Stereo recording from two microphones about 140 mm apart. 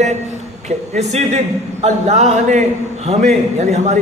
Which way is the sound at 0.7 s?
55° right (ahead or behind).